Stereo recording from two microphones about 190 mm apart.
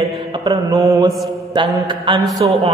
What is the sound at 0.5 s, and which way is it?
Mantra, 20° right (ahead or behind).